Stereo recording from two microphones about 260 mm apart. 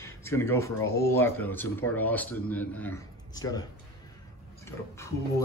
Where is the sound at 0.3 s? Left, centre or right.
Centre.